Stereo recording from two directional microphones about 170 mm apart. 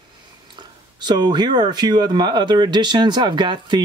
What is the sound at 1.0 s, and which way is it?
Speech, 25° right (ahead or behind).